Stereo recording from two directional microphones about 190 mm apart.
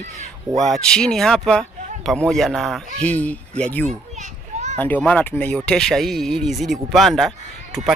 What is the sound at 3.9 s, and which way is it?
Children playing, 40° right (ahead or behind).